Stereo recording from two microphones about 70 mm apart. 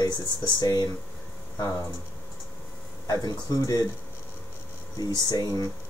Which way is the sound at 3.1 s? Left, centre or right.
Left.